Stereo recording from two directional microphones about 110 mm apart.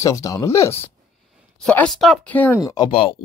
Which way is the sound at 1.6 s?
10° left (ahead or behind).